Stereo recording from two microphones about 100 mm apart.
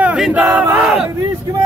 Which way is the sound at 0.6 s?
20° right (ahead or behind).